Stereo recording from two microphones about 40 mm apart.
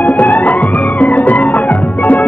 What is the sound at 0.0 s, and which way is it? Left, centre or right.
Music, left.